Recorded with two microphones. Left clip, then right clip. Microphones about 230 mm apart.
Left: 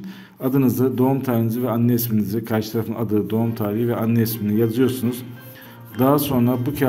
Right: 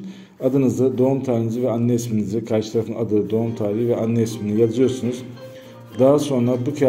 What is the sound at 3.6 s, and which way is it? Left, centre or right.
Speech, left.